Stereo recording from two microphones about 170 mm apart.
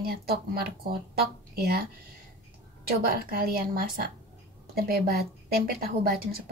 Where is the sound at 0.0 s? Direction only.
65° right (ahead or behind).